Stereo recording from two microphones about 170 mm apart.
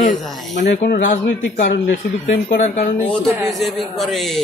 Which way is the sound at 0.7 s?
50° left (ahead or behind).